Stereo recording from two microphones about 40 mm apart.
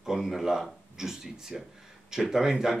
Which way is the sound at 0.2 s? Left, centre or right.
Centre.